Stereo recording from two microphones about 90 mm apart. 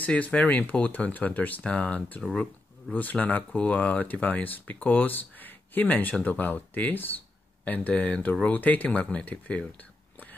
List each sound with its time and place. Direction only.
0.0 s speech: 15° left (ahead or behind)